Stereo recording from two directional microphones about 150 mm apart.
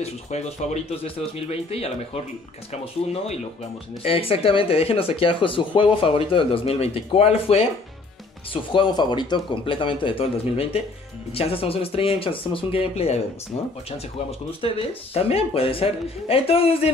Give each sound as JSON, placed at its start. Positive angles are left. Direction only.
{"t": 0.0, "sound": "speech", "side_deg": 50}
{"t": 8.7, "sound": "speech", "side_deg": 30}
{"t": 14.6, "sound": "speech", "side_deg": 40}